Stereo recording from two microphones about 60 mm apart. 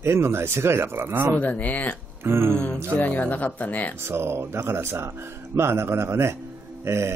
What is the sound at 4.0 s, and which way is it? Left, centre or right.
Mantra, right.